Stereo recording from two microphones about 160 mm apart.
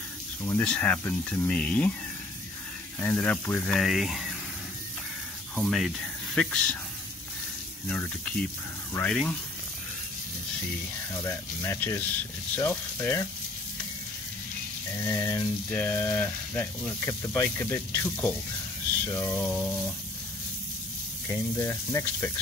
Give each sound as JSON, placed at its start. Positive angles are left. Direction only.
{"t": 0.4, "sound": "speech", "side_deg": 10}
{"t": 3.0, "sound": "speech", "side_deg": 10}
{"t": 5.6, "sound": "speech", "side_deg": 0}
{"t": 7.9, "sound": "speech", "side_deg": 5}
{"t": 11.2, "sound": "speech", "side_deg": 15}
{"t": 15.0, "sound": "speech", "side_deg": 15}
{"t": 21.3, "sound": "speech", "side_deg": 15}